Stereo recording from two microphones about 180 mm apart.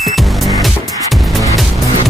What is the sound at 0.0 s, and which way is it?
Music, centre (ahead or behind).